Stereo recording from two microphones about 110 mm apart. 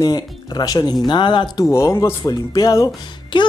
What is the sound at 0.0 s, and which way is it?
Speech, 40° left (ahead or behind).